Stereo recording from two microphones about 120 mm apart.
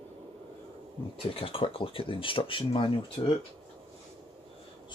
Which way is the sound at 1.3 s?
50° left (ahead or behind).